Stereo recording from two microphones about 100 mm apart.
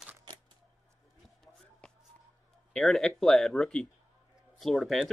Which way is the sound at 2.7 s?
5° left (ahead or behind).